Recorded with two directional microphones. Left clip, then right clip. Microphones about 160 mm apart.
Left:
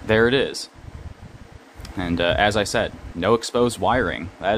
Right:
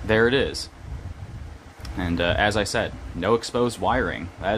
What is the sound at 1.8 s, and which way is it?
Speech, 20° left (ahead or behind).